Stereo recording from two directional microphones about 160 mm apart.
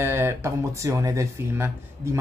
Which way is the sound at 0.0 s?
15° right (ahead or behind).